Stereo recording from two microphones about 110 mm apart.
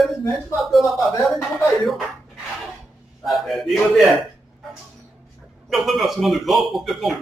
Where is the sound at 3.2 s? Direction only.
Centre (ahead or behind).